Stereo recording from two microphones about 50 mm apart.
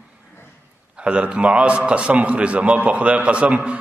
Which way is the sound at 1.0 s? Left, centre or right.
Right.